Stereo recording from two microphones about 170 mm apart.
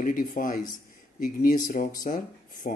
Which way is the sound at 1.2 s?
55° left (ahead or behind).